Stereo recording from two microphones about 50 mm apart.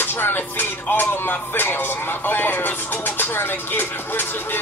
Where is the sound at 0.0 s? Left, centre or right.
Left.